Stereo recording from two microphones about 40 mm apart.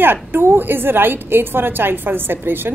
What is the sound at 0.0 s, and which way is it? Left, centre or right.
A woman's voice, right.